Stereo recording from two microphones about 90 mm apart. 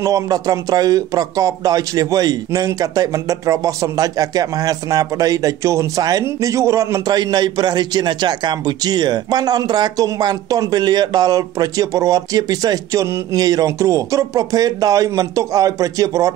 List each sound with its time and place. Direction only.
0.0 s a man's voice: 40° right (ahead or behind)
7.1 s a man's voice: 50° right (ahead or behind)